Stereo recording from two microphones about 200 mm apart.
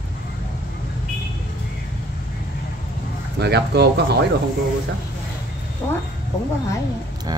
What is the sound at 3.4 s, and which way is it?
Speech, 55° right (ahead or behind).